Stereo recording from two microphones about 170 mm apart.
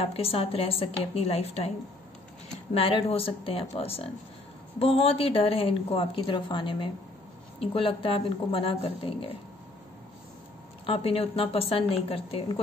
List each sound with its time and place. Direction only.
0.0 s a woman's voice: 35° left (ahead or behind)
2.7 s a woman's voice: 35° left (ahead or behind)
10.9 s a woman's voice: 35° left (ahead or behind)